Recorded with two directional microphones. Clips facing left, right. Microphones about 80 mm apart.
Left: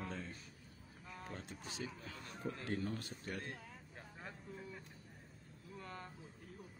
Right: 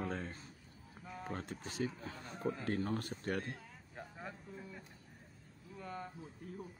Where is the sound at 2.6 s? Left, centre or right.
Right.